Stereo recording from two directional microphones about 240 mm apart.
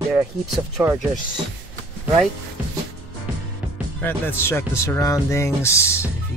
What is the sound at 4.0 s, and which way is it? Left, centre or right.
Speech, centre.